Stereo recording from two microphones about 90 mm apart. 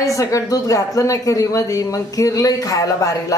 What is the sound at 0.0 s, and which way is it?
Speech, 40° left (ahead or behind).